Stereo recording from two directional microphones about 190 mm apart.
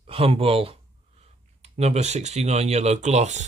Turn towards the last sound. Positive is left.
turn(degrees=-35)  # may be behind; listen again after turning